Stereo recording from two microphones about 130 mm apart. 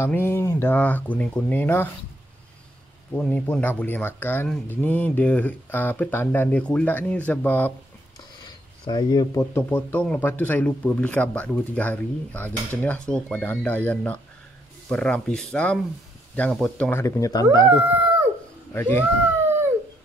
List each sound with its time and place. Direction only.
0.0 s speech: 20° left (ahead or behind)
3.2 s speech: 10° left (ahead or behind)
8.5 s speech: 30° left (ahead or behind); by 16.9 s 5° left (ahead or behind)
16.9 s speech: 25° left (ahead or behind)
17.9 s howl: 15° right (ahead or behind)
18.7 s speech: 15° left (ahead or behind)